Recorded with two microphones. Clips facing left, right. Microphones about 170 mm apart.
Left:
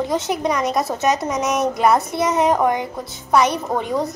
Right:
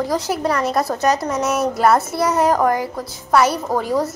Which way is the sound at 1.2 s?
15° left (ahead or behind).